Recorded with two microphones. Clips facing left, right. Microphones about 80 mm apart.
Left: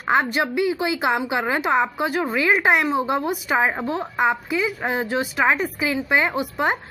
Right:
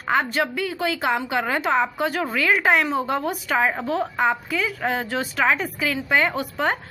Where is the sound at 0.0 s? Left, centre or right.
Centre.